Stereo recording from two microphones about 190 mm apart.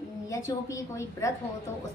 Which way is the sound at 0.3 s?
15° left (ahead or behind).